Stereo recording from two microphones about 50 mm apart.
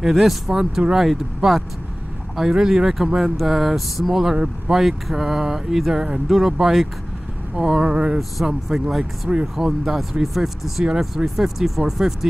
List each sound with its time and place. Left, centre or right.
0.0 s speech: centre
8.2 s speech: centre